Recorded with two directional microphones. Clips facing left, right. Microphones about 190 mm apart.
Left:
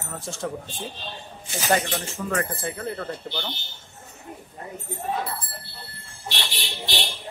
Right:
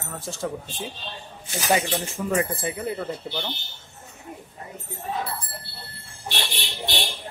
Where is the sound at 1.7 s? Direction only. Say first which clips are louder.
Right 1 dB; 15° right (ahead or behind).